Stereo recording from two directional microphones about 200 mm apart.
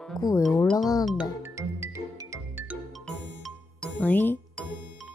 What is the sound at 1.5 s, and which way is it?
Music, 15° right (ahead or behind).